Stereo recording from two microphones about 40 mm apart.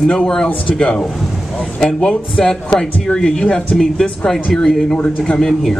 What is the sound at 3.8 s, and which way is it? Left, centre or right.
A man's voice, centre.